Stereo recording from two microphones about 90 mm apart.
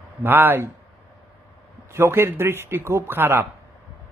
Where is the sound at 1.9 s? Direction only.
30° right (ahead or behind).